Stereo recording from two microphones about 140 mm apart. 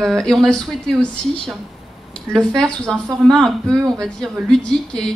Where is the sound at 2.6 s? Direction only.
5° left (ahead or behind).